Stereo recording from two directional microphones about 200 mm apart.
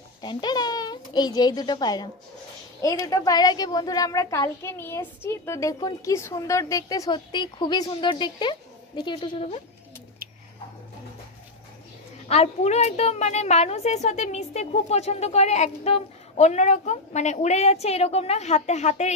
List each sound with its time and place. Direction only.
0.2 s a woman's voice: 20° left (ahead or behind)
12.3 s a woman's voice: 30° left (ahead or behind)